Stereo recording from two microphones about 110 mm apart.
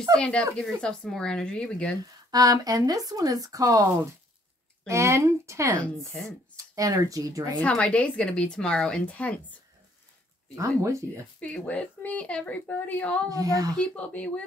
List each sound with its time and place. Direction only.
0.2 s speech: 10° left (ahead or behind)
2.3 s speech: 35° right (ahead or behind)
6.1 s speech: 10° left (ahead or behind)
6.5 s speech: 30° right (ahead or behind)
7.6 s speech: 10° left (ahead or behind)
10.5 s speech: 30° right (ahead or behind)
11.3 s speech: 10° left (ahead or behind)
13.3 s speech: 35° right (ahead or behind)
13.7 s speech: 10° left (ahead or behind)